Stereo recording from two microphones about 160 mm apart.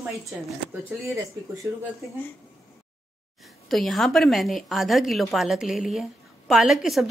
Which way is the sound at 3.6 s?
Centre (ahead or behind).